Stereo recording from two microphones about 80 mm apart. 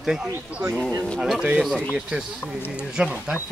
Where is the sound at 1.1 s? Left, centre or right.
Centre.